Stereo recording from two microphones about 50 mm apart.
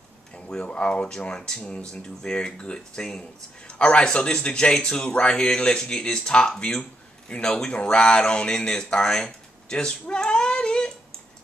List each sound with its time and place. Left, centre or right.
0.5 s speech: left
8.5 s cat: centre